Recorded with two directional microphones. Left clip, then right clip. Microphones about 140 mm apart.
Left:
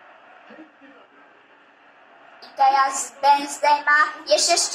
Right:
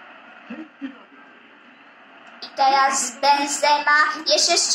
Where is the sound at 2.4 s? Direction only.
25° right (ahead or behind).